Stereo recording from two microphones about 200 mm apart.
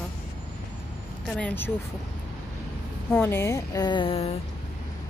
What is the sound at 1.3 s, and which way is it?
Speech, 10° left (ahead or behind).